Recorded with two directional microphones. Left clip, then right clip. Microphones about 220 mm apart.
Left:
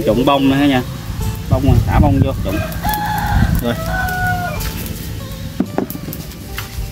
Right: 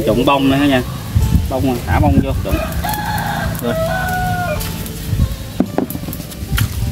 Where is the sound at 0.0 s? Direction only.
25° left (ahead or behind).